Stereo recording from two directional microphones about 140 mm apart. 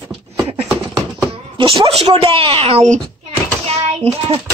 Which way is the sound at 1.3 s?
40° right (ahead or behind).